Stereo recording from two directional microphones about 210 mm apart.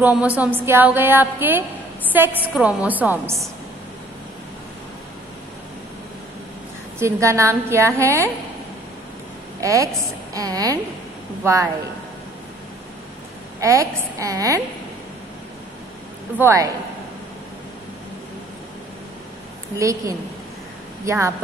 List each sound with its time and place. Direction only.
0.0 s a woman's voice: 5° right (ahead or behind)
7.0 s a woman's voice: 15° right (ahead or behind)
9.6 s a woman's voice: 15° right (ahead or behind)
13.6 s a woman's voice: 15° right (ahead or behind)
16.3 s a woman's voice: 15° right (ahead or behind)
19.8 s a woman's voice: 15° right (ahead or behind)